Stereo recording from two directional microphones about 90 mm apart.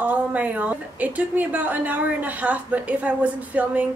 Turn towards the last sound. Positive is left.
turn(degrees=-15)  # may be behind; listen again after turning